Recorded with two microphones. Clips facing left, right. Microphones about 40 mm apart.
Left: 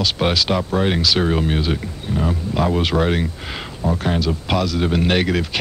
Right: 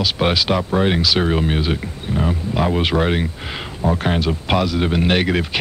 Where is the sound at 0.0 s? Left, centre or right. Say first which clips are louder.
Right 1 dB; centre.